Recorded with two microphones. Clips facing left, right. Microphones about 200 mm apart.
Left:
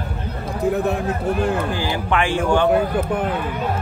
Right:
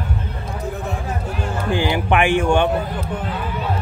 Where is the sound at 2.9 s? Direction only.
55° left (ahead or behind).